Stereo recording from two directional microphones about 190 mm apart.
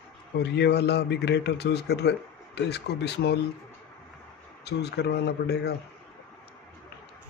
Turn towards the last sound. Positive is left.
turn(degrees=60)  # may be behind; listen again after turning